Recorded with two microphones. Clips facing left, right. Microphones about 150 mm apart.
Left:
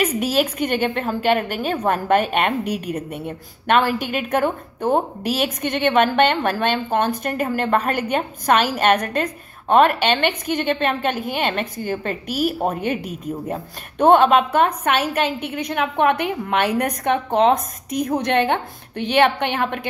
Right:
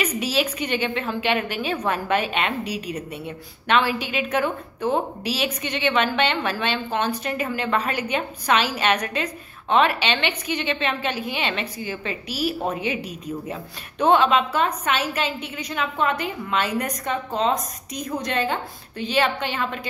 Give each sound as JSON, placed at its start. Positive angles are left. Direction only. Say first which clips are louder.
{"t": 0.0, "sound": "a woman's voice", "louder": "left 4 dB", "side_deg": 50}